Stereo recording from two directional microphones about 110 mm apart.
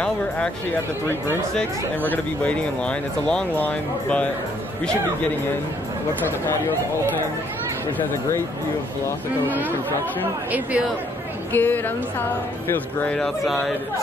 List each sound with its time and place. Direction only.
0.0 s speech: 10° left (ahead or behind)
2.0 s speech: 10° left (ahead or behind)
11.5 s speech: 15° left (ahead or behind)